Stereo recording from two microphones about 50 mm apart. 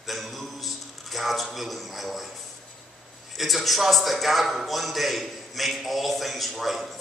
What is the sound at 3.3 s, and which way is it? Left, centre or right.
A man's voice, centre.